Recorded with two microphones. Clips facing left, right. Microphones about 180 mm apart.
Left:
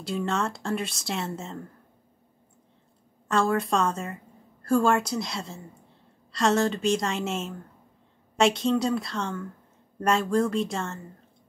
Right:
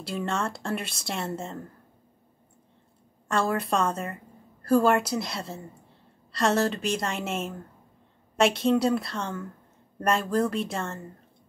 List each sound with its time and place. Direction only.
0.0 s a woman's voice: centre (ahead or behind)
3.3 s a woman's voice: centre (ahead or behind)